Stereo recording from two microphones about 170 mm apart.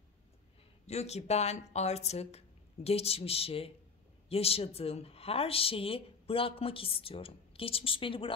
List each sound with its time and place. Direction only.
0.8 s a woman's voice: 40° left (ahead or behind)